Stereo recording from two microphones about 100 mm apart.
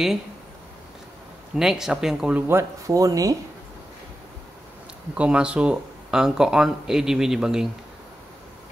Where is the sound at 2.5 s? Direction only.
30° right (ahead or behind).